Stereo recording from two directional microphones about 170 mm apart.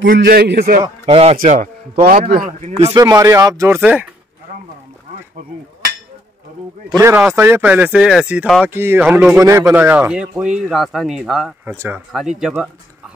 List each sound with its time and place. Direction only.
0.0 s a man's voice: 85° right; by 0.7 s 70° right (ahead or behind)
1.0 s speech: 35° right (ahead or behind)
1.4 s a man's voice: 50° right (ahead or behind)
2.8 s speech: 25° right (ahead or behind); by 4.1 s 10° right (ahead or behind)
7.0 s speech: 15° right (ahead or behind)
11.7 s speech: 15° right (ahead or behind)
12.1 s speech: centre (ahead or behind)